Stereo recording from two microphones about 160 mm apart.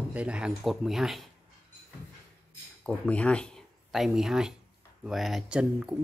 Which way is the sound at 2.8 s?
10° left (ahead or behind).